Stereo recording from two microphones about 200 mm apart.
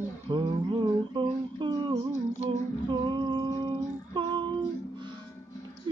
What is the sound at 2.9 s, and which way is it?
Music, 25° right (ahead or behind).